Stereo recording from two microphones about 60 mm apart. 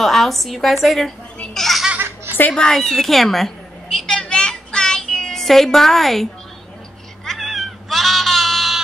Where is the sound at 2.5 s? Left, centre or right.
Centre.